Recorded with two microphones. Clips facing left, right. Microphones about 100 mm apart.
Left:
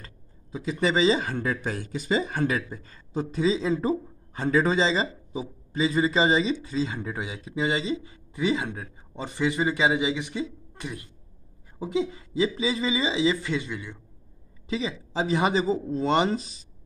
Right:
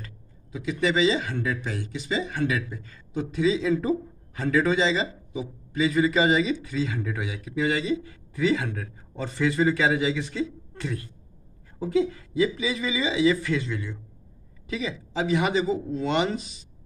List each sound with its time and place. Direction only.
0.0 s a man's voice: 35° left (ahead or behind); by 13.9 s 15° left (ahead or behind)
14.7 s speech: 30° left (ahead or behind)